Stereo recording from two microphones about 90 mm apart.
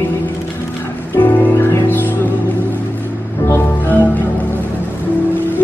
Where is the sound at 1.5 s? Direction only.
35° left (ahead or behind).